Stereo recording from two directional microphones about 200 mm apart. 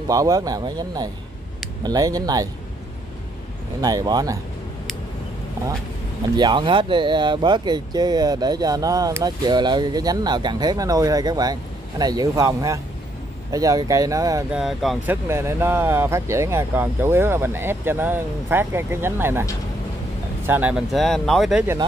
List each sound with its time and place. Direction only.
0.1 s speech: 15° right (ahead or behind)
3.8 s speech: 20° right (ahead or behind)
6.3 s speech: 20° right (ahead or behind)
14.5 s speech: centre (ahead or behind)
15.2 s speech: 15° right (ahead or behind)
20.4 s speech: 10° right (ahead or behind)